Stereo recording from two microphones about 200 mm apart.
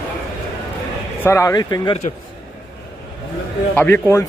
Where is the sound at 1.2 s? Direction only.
15° left (ahead or behind).